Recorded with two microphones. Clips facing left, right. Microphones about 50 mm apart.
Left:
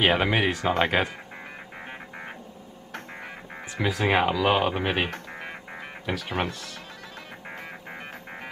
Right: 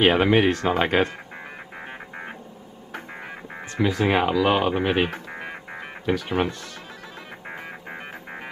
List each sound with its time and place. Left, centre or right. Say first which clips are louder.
0.0 s speech: right 4 dB; centre
3.7 s speech: right 2 dB; centre